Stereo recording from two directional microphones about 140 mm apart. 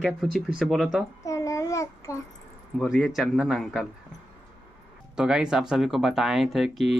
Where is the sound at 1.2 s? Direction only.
25° left (ahead or behind).